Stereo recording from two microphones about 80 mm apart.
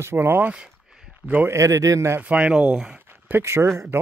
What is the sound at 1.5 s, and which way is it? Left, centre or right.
Speech, right.